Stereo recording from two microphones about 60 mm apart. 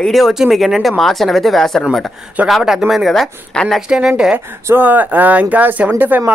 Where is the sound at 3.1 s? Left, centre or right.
Centre.